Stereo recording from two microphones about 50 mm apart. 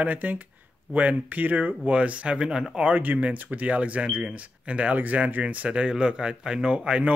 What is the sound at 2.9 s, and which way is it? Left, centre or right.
Speech, right.